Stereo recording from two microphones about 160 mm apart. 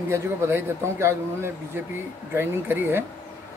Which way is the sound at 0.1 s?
15° right (ahead or behind).